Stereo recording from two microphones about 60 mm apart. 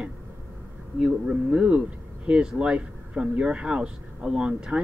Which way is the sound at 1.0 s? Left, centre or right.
Centre.